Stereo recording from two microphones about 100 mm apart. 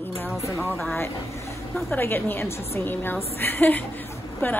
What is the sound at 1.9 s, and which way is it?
A woman's voice, 20° left (ahead or behind).